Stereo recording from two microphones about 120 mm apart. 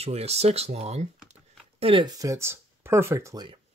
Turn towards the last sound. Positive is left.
turn(degrees=-25)  # may be behind; listen again after turning